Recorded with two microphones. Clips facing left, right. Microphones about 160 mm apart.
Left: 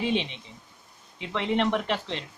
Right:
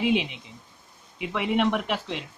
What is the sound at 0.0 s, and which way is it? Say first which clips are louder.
Speech: right 3 dB; 10° right (ahead or behind).